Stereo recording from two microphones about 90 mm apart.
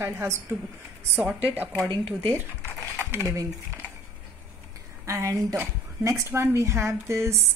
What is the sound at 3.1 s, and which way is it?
Speech, 30° right (ahead or behind).